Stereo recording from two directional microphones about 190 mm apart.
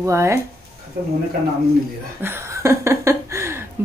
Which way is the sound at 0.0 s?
15° right (ahead or behind).